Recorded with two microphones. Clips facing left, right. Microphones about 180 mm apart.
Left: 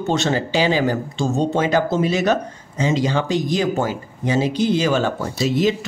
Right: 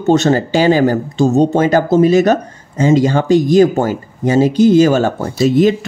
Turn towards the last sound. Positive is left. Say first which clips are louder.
# right 7 dB
turn(degrees=-50)  # may be behind; listen again after turning